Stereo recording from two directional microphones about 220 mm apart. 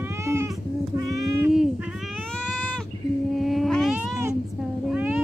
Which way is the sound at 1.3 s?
10° right (ahead or behind).